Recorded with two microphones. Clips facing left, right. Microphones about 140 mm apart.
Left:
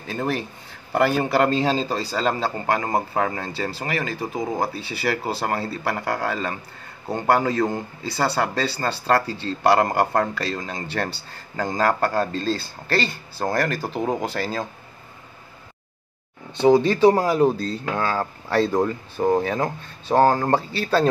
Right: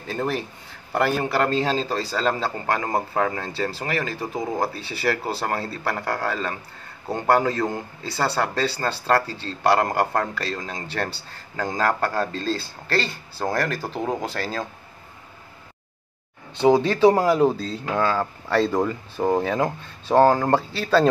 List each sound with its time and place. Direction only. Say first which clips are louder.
0.1 s a man's voice: even; 10° left (ahead or behind)
16.6 s a man's voice: left 1 dB; 5° right (ahead or behind)